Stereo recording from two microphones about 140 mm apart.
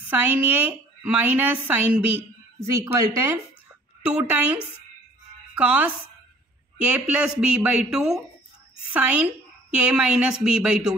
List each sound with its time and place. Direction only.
0.1 s a woman's voice: 10° right (ahead or behind)
4.1 s a woman's voice: 10° right (ahead or behind)
6.9 s a woman's voice: 5° right (ahead or behind)